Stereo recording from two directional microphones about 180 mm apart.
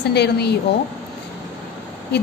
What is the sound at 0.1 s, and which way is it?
Speech, 65° left (ahead or behind).